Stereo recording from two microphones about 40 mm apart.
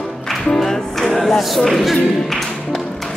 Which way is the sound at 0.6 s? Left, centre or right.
Centre.